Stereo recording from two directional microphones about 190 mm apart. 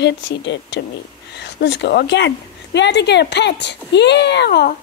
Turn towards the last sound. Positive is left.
turn(degrees=60)  # may be behind; listen again after turning